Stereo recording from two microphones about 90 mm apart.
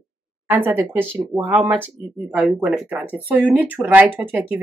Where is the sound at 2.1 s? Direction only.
10° right (ahead or behind).